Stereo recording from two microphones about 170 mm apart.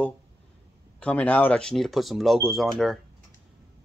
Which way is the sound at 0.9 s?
10° left (ahead or behind).